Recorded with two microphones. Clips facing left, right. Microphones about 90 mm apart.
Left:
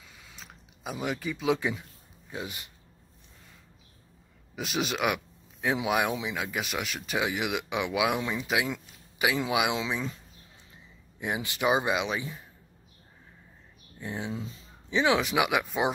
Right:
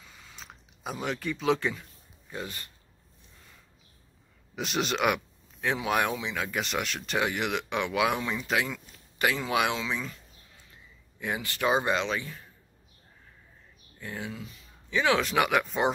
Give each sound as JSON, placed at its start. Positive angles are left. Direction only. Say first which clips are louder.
{"t": 0.0, "sound": "a sound", "louder": "right 1 dB", "side_deg": 5}
{"t": 2.3, "sound": "speech", "louder": "even", "side_deg": 15}
{"t": 4.6, "sound": "speech", "louder": "right 1 dB", "side_deg": 5}
{"t": 11.1, "sound": "speech", "louder": "even", "side_deg": 20}
{"t": 13.9, "sound": "speech", "louder": "left 3 dB", "side_deg": 20}
{"t": 15.0, "sound": "speech", "louder": "even", "side_deg": 15}